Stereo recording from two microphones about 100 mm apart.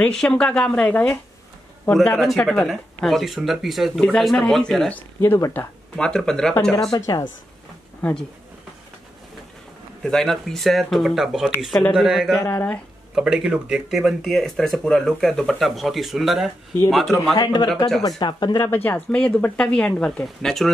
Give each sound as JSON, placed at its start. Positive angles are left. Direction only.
{"t": 0.1, "sound": "speech", "side_deg": 10}
{"t": 2.1, "sound": "speech", "side_deg": 0}
{"t": 5.2, "sound": "speech", "side_deg": 25}
{"t": 5.9, "sound": "speech", "side_deg": 10}
{"t": 6.9, "sound": "speech", "side_deg": 35}
{"t": 8.0, "sound": "speech", "side_deg": 10}
{"t": 10.0, "sound": "speech", "side_deg": 5}
{"t": 12.4, "sound": "speech", "side_deg": 15}
{"t": 13.1, "sound": "speech", "side_deg": -5}
{"t": 17.4, "sound": "speech", "side_deg": 45}
{"t": 18.6, "sound": "speech", "side_deg": 20}